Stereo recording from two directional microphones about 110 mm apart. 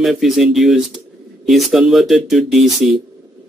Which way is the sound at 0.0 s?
Centre (ahead or behind).